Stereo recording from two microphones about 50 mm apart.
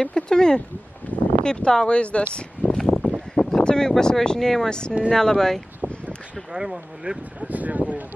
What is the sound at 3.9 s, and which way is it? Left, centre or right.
Speech, centre.